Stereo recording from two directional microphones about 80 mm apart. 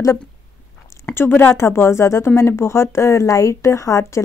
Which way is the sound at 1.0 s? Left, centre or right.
Left.